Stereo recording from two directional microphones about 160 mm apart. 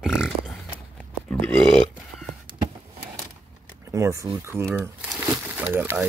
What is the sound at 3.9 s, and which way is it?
Speech, 20° right (ahead or behind).